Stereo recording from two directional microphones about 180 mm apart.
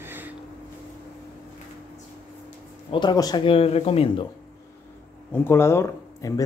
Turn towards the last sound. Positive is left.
turn(degrees=15)  # may be behind; listen again after turning